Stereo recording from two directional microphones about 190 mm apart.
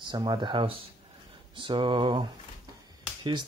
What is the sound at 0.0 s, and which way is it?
Speech, 25° right (ahead or behind).